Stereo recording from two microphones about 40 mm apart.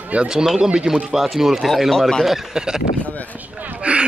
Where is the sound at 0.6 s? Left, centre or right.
Right.